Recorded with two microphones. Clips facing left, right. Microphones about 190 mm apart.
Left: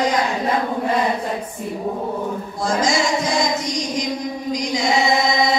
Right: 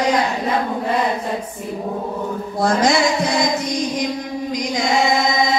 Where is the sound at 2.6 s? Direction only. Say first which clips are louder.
Right 4 dB; 60° right (ahead or behind).